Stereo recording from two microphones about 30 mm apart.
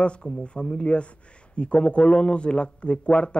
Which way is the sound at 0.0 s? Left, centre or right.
Left.